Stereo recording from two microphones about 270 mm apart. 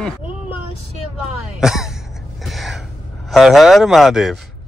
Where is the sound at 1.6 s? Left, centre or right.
Centre.